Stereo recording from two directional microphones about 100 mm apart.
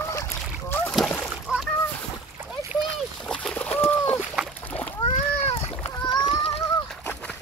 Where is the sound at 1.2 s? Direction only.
5° right (ahead or behind).